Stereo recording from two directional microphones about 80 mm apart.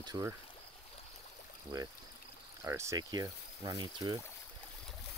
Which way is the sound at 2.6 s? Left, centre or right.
Right.